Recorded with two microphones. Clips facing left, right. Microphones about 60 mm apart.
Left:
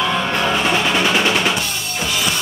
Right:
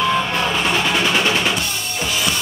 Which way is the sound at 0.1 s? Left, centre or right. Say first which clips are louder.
Left 1 dB; left.